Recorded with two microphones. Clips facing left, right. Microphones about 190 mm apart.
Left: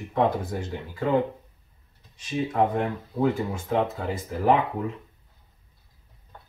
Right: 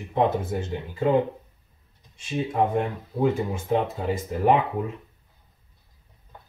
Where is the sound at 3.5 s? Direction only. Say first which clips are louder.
Right 1 dB; 20° right (ahead or behind).